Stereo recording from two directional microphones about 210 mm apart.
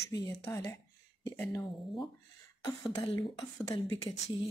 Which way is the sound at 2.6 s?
20° left (ahead or behind).